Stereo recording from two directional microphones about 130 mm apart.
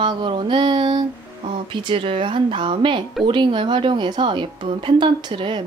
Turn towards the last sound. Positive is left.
turn(degrees=-40)  # may be behind; listen again after turning